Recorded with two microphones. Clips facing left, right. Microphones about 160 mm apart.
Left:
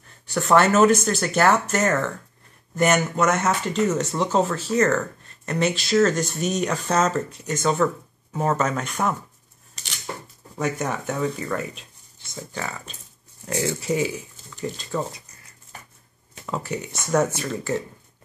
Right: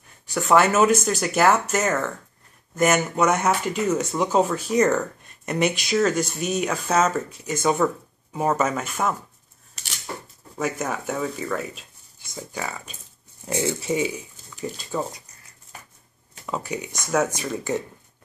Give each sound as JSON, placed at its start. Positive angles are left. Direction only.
{"t": 0.3, "sound": "speech", "side_deg": -5}
{"t": 10.6, "sound": "speech", "side_deg": -5}
{"t": 13.9, "sound": "speech", "side_deg": -25}
{"t": 14.5, "sound": "speech", "side_deg": -5}
{"t": 16.6, "sound": "speech", "side_deg": -15}